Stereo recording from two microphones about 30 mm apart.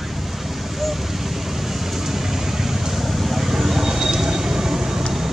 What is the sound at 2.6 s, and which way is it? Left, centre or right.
Vehicle, centre.